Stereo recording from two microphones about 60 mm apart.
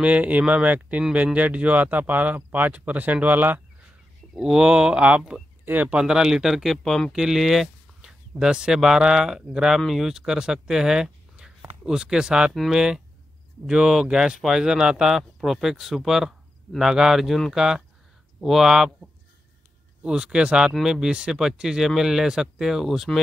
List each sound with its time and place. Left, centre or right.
0.0 s speech: right
4.4 s speech: centre
5.7 s speech: right
5.9 s speech: centre
7.1 s speech: centre
12.5 s speech: centre